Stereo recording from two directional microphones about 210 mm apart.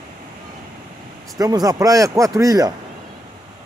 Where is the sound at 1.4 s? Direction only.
15° right (ahead or behind).